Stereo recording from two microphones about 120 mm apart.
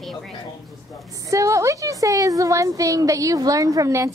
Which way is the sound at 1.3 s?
25° right (ahead or behind).